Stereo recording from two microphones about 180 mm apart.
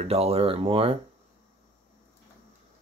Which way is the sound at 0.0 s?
35° right (ahead or behind).